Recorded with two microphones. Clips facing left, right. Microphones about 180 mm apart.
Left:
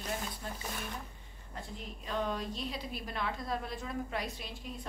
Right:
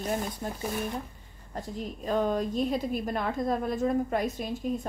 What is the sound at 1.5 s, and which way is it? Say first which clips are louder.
A woman's voice: right 9 dB; 40° right (ahead or behind).